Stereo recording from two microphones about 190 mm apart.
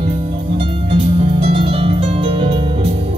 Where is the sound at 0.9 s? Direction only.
30° right (ahead or behind).